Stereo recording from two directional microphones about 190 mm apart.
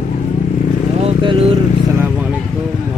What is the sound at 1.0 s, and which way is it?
Vehicle, 30° right (ahead or behind).